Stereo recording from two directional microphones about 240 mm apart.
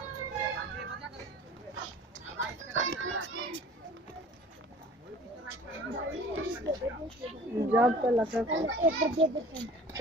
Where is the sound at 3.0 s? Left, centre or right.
Right.